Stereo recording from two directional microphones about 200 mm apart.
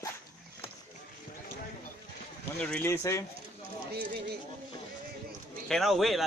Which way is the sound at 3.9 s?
55° right (ahead or behind).